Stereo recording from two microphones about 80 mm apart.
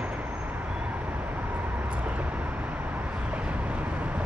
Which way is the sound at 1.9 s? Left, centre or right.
Centre.